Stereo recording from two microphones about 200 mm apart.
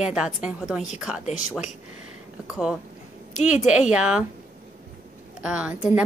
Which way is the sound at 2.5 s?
5° right (ahead or behind).